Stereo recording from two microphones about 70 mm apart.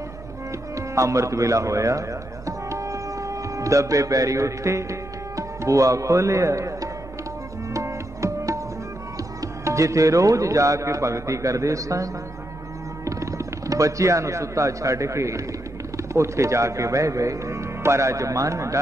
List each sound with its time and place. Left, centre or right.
0.7 s speech: right
7.7 s music: right
9.4 s speech: right